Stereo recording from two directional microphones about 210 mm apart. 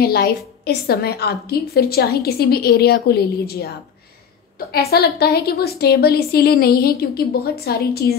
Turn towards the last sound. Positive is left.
turn(degrees=50)  # may be behind; listen again after turning